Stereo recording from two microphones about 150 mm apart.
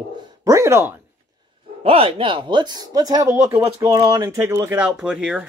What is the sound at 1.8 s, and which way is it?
Speech, 40° right (ahead or behind).